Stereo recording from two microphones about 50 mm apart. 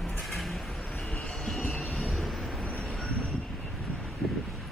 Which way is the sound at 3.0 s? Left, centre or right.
Left.